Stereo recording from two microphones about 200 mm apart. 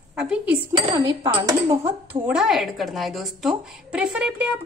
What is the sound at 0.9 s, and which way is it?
Speech, 15° right (ahead or behind).